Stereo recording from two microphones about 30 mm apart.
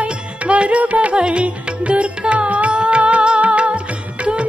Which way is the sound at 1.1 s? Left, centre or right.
Right.